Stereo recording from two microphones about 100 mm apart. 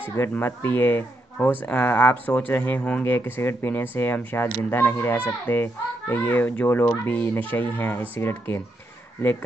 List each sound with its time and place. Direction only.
0.2 s speech: 25° left (ahead or behind)